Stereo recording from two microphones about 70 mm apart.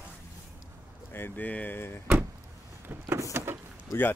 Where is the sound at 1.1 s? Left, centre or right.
Left.